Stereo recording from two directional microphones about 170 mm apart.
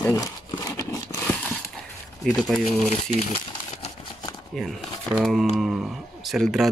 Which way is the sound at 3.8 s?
25° left (ahead or behind).